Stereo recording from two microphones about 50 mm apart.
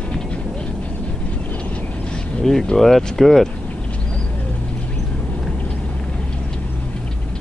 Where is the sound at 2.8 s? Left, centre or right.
Centre.